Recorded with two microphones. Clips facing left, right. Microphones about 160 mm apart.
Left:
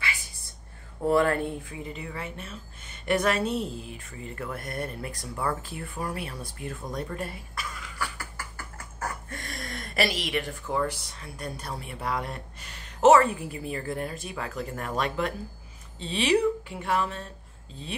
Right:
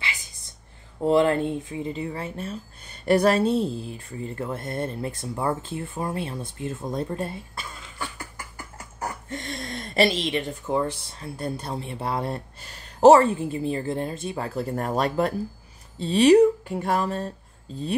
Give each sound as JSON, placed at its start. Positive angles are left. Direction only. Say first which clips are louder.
{"t": 1.0, "sound": "speech", "louder": "right 3 dB", "side_deg": -25}